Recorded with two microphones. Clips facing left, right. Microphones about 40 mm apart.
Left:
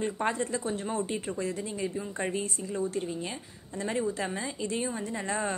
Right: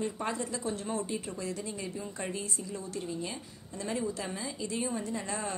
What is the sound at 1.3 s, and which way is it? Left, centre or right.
Speech, left.